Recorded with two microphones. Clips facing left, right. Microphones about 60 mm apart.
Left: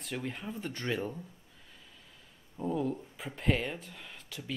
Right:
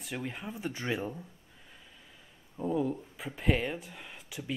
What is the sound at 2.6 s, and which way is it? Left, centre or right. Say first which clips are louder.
Speech: right 2 dB; centre.